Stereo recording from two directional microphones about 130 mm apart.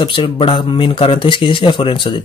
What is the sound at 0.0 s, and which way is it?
Speech, 40° left (ahead or behind).